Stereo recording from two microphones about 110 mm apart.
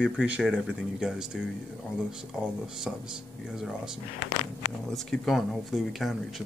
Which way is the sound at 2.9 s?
5° right (ahead or behind).